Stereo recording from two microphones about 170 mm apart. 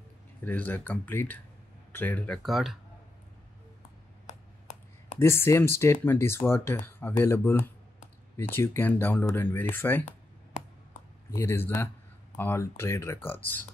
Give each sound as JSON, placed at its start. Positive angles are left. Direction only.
{"t": 0.4, "sound": "speech", "side_deg": 10}
{"t": 4.3, "sound": "computer keyboard", "side_deg": 45}
{"t": 5.2, "sound": "speech", "side_deg": 15}
{"t": 10.0, "sound": "a sound", "side_deg": 45}
{"t": 11.3, "sound": "speech", "side_deg": 15}